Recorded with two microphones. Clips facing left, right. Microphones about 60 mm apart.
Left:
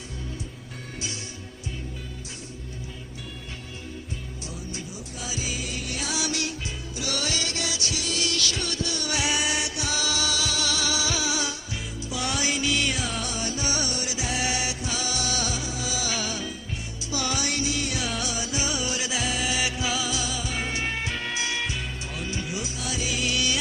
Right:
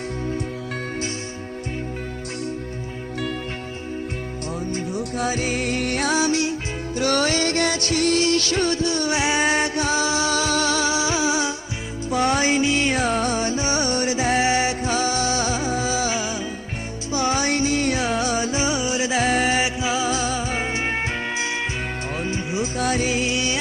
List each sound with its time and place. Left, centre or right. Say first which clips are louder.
4.6 s music: right 11 dB; right
6.2 s music: right 9 dB; right
7.0 s music: right 10 dB; right
16.2 s music: right 5 dB; right
22.8 s music: right 12 dB; right
23.1 s music: right 4 dB; right